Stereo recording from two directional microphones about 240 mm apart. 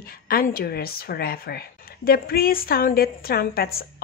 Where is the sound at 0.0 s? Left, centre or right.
Left.